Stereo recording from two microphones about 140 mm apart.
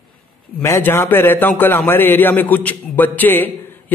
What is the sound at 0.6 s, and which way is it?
A man's voice, 15° left (ahead or behind).